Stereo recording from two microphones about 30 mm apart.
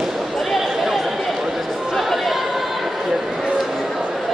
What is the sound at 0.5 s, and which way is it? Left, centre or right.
Chatter, centre.